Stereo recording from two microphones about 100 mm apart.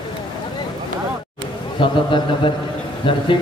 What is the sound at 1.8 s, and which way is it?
A man's voice, 55° left (ahead or behind).